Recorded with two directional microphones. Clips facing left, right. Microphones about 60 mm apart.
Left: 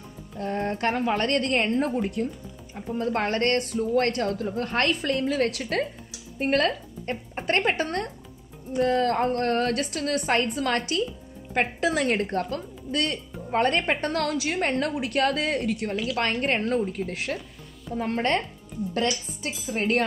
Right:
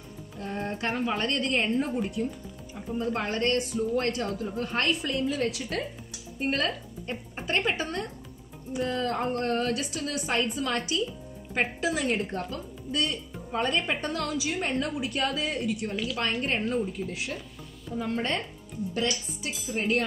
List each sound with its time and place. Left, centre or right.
0.4 s a woman's voice: left
19.4 s a woman's voice: left